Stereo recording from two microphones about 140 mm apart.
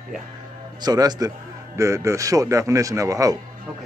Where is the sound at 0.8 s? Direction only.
30° right (ahead or behind).